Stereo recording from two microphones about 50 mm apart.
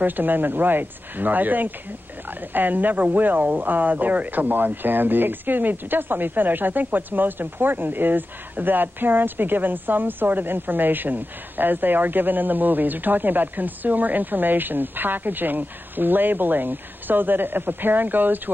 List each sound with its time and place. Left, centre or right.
0.0 s speech: right